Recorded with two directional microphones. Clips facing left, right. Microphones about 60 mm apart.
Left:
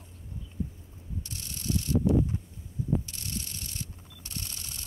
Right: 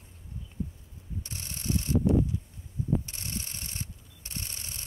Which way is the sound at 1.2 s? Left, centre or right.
Right.